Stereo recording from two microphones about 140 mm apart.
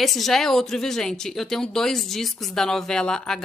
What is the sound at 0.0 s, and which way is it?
Speech, centre (ahead or behind).